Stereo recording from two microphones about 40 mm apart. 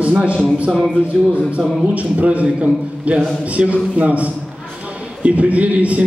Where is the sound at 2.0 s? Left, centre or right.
Right.